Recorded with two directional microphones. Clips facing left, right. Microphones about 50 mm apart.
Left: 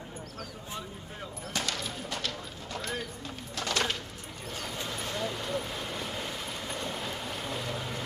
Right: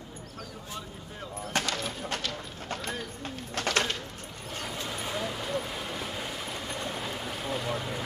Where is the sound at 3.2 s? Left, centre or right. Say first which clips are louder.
Right 6 dB; right.